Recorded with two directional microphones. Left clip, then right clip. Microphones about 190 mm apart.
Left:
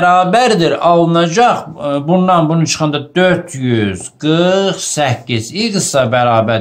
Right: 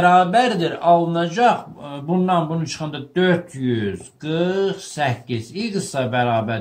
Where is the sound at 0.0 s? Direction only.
40° left (ahead or behind).